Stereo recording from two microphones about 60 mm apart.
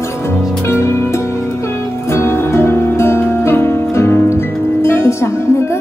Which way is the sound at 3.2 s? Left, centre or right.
Left.